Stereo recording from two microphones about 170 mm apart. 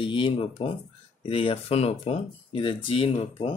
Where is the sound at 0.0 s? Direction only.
30° left (ahead or behind).